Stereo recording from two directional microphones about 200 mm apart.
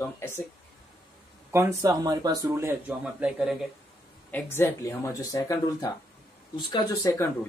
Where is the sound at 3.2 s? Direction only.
5° right (ahead or behind).